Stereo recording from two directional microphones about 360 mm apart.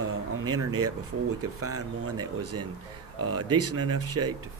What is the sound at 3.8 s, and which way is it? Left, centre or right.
Speech, right.